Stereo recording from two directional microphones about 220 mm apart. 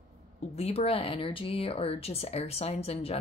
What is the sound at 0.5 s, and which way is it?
Speech, 25° left (ahead or behind).